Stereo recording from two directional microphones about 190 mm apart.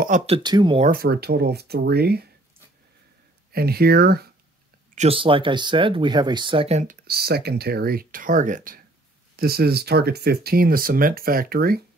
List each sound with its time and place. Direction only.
0.3 s speech: 20° right (ahead or behind)
0.7 s speech: 45° right (ahead or behind)
3.5 s speech: 55° right (ahead or behind)
4.9 s speech: 30° right (ahead or behind); by 11.8 s 50° right (ahead or behind)